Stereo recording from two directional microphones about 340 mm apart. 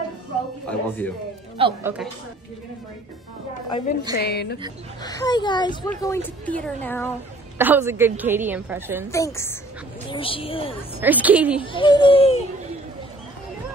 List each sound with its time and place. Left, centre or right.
0.7 s speech: centre
1.6 s a woman's voice: centre
4.1 s a woman's voice: left
5.0 s a woman's voice: centre
7.5 s a woman's voice: centre
9.1 s a woman's voice: centre
11.0 s a woman's voice: centre
11.6 s a woman's voice: centre